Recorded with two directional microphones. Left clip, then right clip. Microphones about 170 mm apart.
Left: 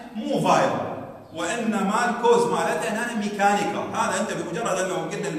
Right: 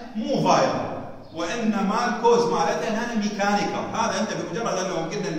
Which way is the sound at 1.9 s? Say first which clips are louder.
Even; 10° left (ahead or behind).